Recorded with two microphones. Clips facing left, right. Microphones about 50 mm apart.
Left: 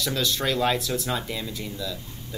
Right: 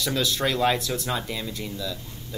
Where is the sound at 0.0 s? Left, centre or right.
Centre.